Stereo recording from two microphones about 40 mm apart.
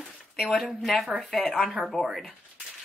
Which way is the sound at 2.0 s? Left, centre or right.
Left.